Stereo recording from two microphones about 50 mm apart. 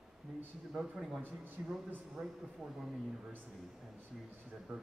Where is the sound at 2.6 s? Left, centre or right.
Centre.